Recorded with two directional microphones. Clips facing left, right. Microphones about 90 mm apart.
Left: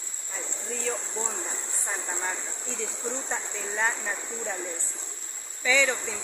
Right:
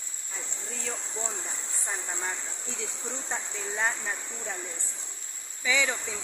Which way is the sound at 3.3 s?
Centre (ahead or behind).